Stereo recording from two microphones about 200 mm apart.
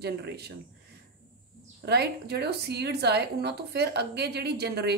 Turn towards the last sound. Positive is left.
turn(degrees=-55)  # may be behind; listen again after turning